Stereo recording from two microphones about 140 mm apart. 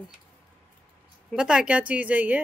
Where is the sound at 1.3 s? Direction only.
5° right (ahead or behind).